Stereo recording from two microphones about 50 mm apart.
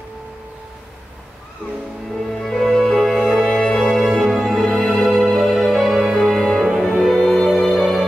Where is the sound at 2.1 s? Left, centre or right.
Centre.